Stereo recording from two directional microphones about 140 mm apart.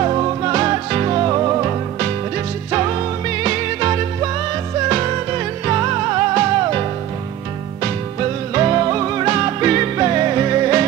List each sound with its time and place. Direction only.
0.0 s music: 30° right (ahead or behind)